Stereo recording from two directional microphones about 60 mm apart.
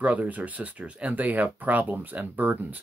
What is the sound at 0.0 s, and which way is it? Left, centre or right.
Speech, right.